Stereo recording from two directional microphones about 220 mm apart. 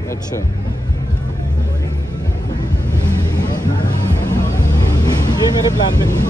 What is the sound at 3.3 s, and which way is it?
Vehicle, 20° left (ahead or behind).